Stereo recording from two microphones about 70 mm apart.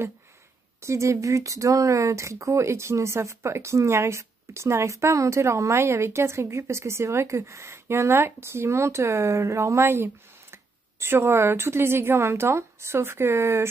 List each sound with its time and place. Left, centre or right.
0.8 s speech: right